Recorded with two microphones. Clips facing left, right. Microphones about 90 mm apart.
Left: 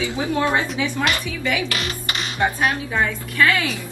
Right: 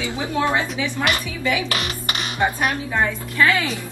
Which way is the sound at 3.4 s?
5° right (ahead or behind).